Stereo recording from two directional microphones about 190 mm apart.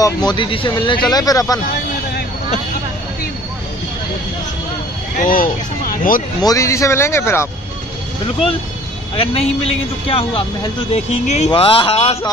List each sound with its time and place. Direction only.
0.0 s speech: 20° left (ahead or behind)
5.2 s speech: 45° left (ahead or behind)
6.4 s a man's voice: 15° left (ahead or behind)
9.1 s speech: 30° left (ahead or behind)